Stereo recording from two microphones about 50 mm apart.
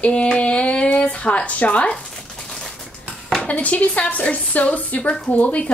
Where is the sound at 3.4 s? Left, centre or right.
Left.